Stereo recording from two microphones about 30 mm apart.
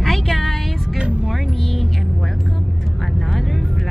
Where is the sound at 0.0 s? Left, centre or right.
Centre.